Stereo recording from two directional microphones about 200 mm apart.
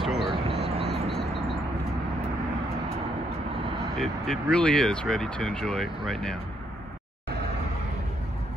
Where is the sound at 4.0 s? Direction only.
5° left (ahead or behind).